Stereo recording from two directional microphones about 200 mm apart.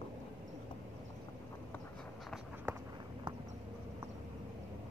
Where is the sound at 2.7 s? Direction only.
10° right (ahead or behind).